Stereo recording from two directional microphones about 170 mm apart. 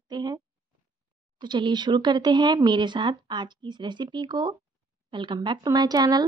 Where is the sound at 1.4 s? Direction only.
25° right (ahead or behind).